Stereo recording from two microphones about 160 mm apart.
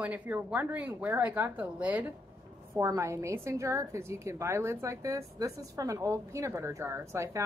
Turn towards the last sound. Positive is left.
turn(degrees=-15)  # may be behind; listen again after turning